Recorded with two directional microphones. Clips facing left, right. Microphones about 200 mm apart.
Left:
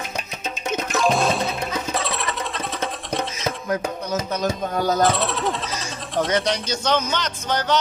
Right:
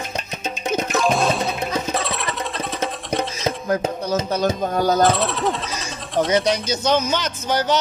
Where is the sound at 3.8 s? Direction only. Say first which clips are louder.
Right 3 dB; 30° right (ahead or behind).